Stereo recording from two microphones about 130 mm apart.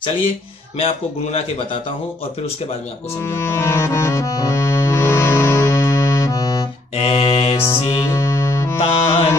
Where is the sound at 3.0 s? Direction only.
20° left (ahead or behind).